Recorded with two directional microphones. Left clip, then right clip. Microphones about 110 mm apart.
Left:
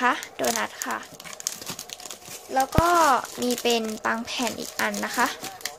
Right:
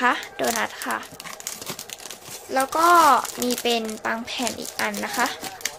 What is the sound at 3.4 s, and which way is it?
Speech, 35° left (ahead or behind).